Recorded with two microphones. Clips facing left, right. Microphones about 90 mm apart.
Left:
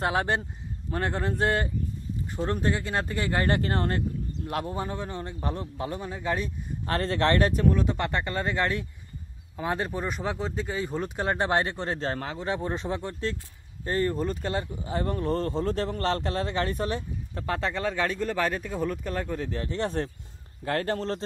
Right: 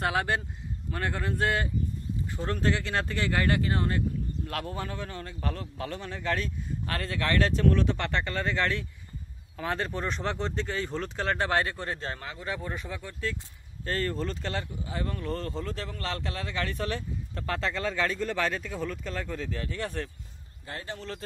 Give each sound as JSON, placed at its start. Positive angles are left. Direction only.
{"t": 0.0, "sound": "speech", "side_deg": 25}
{"t": 3.3, "sound": "speech", "side_deg": 30}
{"t": 3.6, "sound": "speech", "side_deg": 45}
{"t": 4.5, "sound": "speech", "side_deg": 20}
{"t": 6.9, "sound": "speech", "side_deg": 30}
{"t": 7.4, "sound": "speech", "side_deg": 15}
{"t": 13.8, "sound": "speech", "side_deg": 20}
{"t": 14.8, "sound": "speech", "side_deg": 30}
{"t": 15.7, "sound": "speech", "side_deg": 40}
{"t": 16.7, "sound": "speech", "side_deg": 20}
{"t": 17.8, "sound": "speech", "side_deg": 10}
{"t": 20.6, "sound": "speech", "side_deg": 70}
{"t": 20.9, "sound": "speech", "side_deg": 40}